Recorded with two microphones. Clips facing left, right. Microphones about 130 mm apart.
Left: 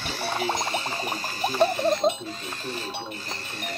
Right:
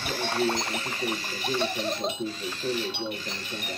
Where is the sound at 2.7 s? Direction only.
45° left (ahead or behind).